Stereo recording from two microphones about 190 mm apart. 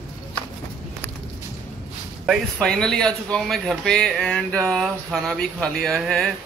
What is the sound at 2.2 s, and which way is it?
Speech, centre (ahead or behind).